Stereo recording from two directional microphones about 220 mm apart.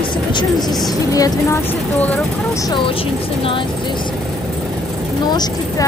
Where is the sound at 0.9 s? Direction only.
15° left (ahead or behind).